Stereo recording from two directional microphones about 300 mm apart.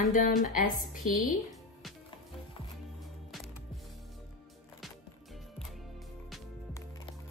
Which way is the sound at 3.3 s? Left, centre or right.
Centre.